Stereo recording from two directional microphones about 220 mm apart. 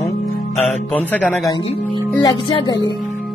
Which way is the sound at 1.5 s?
20° left (ahead or behind).